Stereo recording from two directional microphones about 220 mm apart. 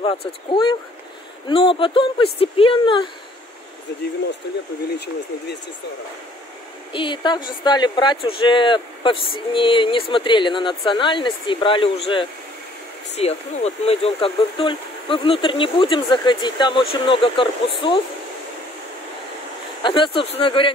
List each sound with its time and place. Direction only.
0.0 s speech: 20° left (ahead or behind)
6.9 s speech: 20° left (ahead or behind)
19.8 s speech: 20° left (ahead or behind)